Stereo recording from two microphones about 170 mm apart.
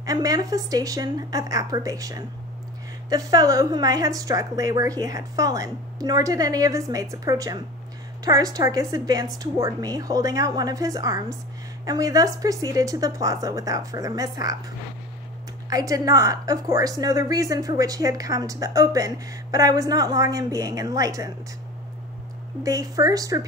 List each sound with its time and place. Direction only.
0.0 s a woman's voice: 20° right (ahead or behind)
15.7 s a woman's voice: 20° right (ahead or behind)
22.6 s a woman's voice: 20° right (ahead or behind)